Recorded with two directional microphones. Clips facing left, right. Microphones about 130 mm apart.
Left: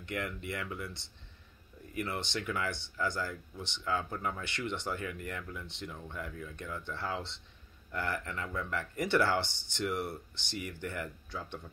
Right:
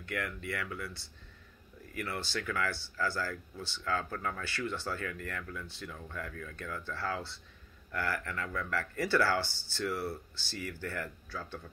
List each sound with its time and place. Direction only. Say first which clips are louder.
0.0 s speech: even; 20° left (ahead or behind)